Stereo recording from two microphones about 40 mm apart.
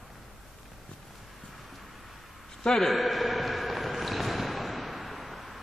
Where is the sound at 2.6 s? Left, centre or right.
Centre.